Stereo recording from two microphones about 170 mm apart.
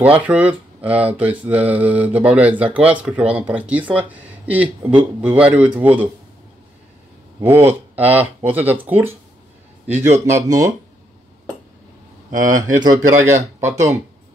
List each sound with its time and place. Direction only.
0.0 s speech: 10° right (ahead or behind)
7.4 s speech: 10° right (ahead or behind)
10.1 s speech: 15° right (ahead or behind)
12.4 s speech: 50° right (ahead or behind)
12.6 s speech: 25° right (ahead or behind)
13.1 s speech: 45° right (ahead or behind)
13.6 s speech: 15° right (ahead or behind)